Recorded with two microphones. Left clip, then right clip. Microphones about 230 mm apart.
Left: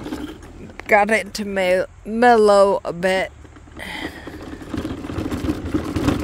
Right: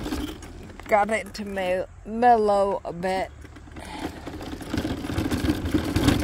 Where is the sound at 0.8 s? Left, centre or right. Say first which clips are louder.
Left 6 dB; left.